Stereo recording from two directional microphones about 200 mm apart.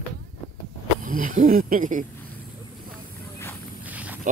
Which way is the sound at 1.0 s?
40° right (ahead or behind).